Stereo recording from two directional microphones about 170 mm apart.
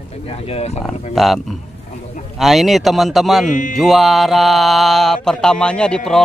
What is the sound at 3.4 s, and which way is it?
Speech, 50° left (ahead or behind).